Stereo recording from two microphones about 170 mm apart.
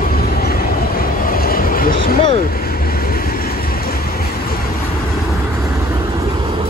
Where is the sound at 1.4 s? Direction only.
60° left (ahead or behind).